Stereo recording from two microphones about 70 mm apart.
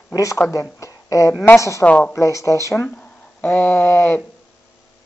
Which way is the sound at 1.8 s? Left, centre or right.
Centre.